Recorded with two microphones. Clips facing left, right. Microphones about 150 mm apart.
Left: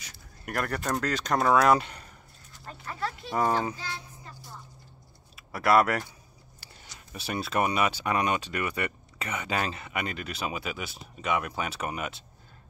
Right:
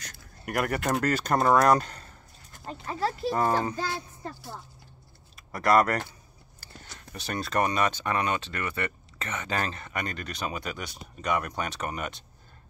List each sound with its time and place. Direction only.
0.0 s a sound: 5° left (ahead or behind)
1.0 s speech: 5° right (ahead or behind)
2.6 s speech: 30° right (ahead or behind)
3.3 s speech: centre (ahead or behind)
3.7 s speech: 60° right (ahead or behind)
5.3 s speech: 5° left (ahead or behind)
7.1 s speech: 5° left (ahead or behind)